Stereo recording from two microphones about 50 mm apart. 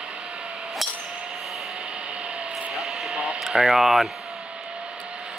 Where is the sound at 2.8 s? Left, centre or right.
Centre.